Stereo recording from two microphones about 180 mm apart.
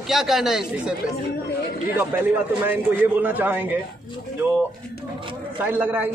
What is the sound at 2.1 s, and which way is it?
A man's voice, 10° right (ahead or behind).